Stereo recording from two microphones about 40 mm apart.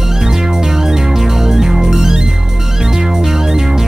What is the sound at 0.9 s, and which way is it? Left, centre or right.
Music, centre.